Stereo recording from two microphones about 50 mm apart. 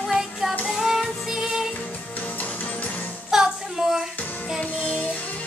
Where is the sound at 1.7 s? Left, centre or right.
Left.